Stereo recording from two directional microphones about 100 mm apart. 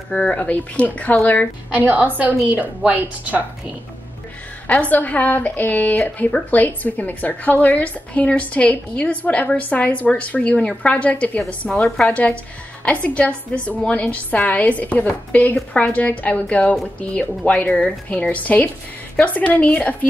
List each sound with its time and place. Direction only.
0.1 s a woman's voice: 10° left (ahead or behind)
1.7 s a woman's voice: 15° right (ahead or behind)
4.6 s a woman's voice: 15° left (ahead or behind)